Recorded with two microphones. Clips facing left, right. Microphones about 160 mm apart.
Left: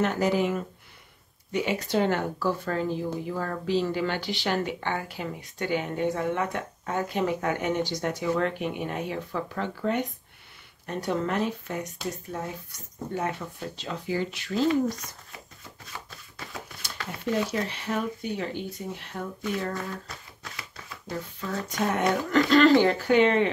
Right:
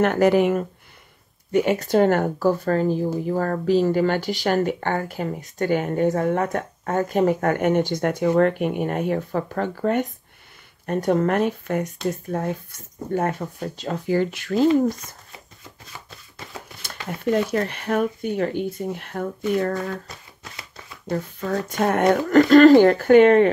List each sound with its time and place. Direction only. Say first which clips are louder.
0.0 s speech: right 7 dB; 60° right (ahead or behind)
17.2 s speech: right 6 dB; 55° right (ahead or behind)
21.1 s speech: right 8 dB; 50° right (ahead or behind)